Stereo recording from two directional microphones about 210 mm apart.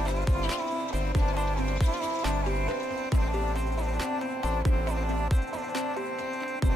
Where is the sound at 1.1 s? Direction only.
Centre (ahead or behind).